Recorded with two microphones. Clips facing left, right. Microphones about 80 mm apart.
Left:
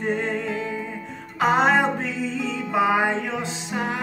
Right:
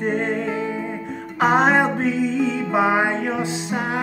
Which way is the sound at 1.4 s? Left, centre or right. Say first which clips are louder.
Right 2 dB; right.